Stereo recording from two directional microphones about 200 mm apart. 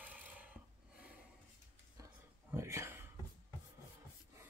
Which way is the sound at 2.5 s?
15° right (ahead or behind).